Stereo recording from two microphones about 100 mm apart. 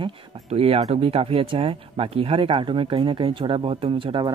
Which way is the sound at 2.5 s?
60° right (ahead or behind).